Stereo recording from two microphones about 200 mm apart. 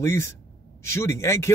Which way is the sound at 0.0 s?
15° left (ahead or behind).